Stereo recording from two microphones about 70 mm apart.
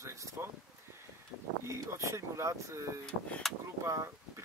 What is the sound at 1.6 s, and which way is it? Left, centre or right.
Speech, right.